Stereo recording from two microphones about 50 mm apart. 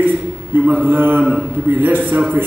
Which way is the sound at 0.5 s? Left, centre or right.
Right.